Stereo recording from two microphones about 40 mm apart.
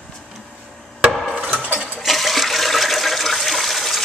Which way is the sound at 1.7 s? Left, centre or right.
Right.